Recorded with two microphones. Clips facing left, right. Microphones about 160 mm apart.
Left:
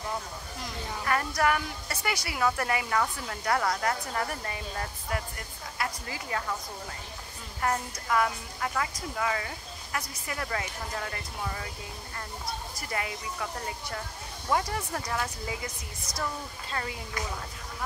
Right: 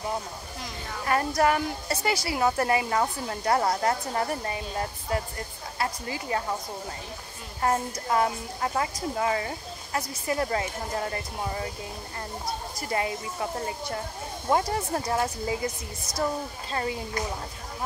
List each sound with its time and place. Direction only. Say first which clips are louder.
1.0 s a woman's voice: right 4 dB; 25° right (ahead or behind)
7.6 s a woman's voice: right 4 dB; 25° right (ahead or behind)
12.8 s a woman's voice: right 6 dB; 30° right (ahead or behind)